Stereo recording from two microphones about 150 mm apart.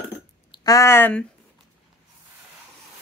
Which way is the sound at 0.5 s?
25° left (ahead or behind).